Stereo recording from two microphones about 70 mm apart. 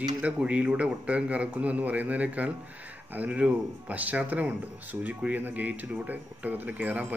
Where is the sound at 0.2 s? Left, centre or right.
Centre.